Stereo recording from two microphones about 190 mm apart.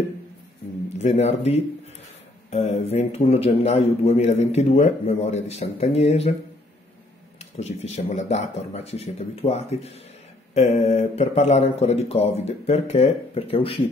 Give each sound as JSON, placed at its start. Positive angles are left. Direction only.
{"t": 0.9, "sound": "a man's voice", "side_deg": 35}
{"t": 7.5, "sound": "a man's voice", "side_deg": 35}